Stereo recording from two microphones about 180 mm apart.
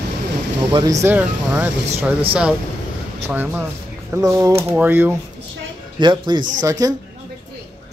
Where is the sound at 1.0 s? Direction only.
10° right (ahead or behind).